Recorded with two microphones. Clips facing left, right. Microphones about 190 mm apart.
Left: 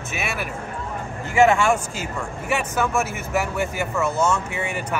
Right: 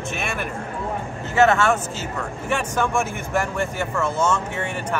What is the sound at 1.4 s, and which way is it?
Speech, 10° left (ahead or behind).